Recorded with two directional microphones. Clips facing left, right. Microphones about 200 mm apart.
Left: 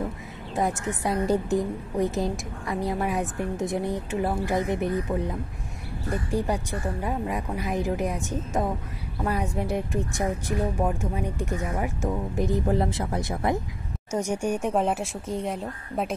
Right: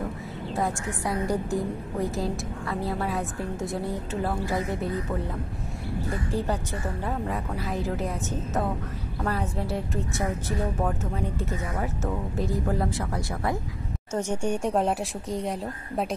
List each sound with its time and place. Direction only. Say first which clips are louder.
0.6 s a woman's voice: left 3 dB; 20° left (ahead or behind)
6.3 s speech: left 3 dB; 15° left (ahead or behind)
14.1 s speech: left 1 dB; 10° left (ahead or behind)